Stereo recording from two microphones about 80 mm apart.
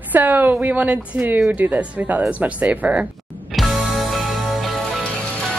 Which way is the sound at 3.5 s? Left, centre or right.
Centre.